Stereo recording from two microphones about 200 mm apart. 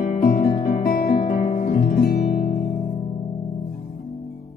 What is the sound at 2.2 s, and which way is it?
Music, 45° left (ahead or behind).